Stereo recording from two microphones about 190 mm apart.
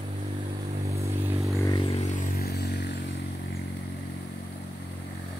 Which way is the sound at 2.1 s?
45° left (ahead or behind).